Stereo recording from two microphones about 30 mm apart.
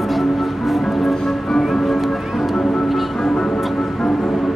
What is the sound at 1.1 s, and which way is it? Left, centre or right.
Music, left.